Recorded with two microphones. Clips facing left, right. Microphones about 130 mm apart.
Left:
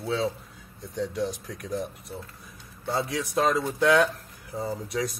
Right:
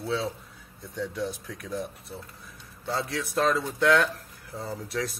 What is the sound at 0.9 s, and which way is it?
Speech, 25° left (ahead or behind).